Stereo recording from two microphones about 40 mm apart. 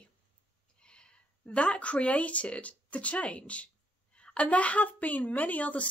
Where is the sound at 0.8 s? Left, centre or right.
Left.